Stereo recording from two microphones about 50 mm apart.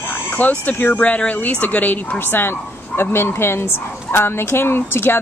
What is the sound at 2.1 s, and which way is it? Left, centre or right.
Speech, left.